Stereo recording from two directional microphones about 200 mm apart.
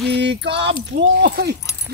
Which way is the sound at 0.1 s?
60° right (ahead or behind).